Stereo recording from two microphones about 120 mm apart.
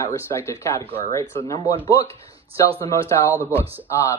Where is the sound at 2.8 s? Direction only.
20° left (ahead or behind).